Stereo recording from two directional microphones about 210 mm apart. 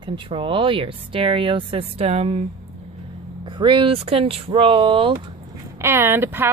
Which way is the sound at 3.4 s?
20° right (ahead or behind).